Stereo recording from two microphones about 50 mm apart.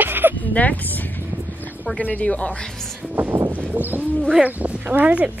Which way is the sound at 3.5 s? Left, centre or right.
Right.